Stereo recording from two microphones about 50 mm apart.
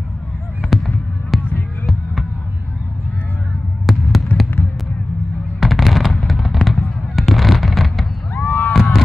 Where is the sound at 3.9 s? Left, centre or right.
Centre.